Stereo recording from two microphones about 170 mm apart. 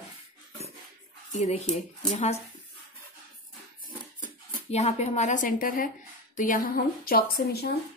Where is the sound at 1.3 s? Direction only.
45° left (ahead or behind).